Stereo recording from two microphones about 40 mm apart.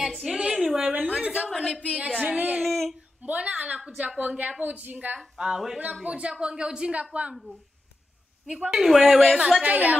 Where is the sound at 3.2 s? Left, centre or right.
Right.